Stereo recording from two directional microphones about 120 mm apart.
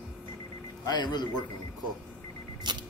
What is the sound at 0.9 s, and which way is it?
Speech, 35° left (ahead or behind).